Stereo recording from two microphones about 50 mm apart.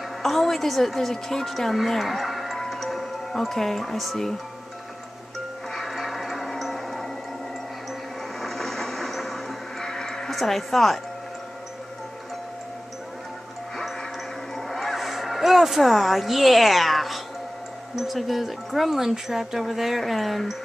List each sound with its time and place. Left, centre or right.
0.2 s a woman's voice: centre
5.7 s a sound: centre
6.6 s music: centre
8.4 s vehicle: centre
14.5 s a sound: centre
17.9 s speech: centre